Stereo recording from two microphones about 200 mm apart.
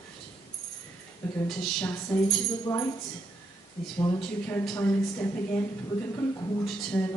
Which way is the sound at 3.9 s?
20° left (ahead or behind).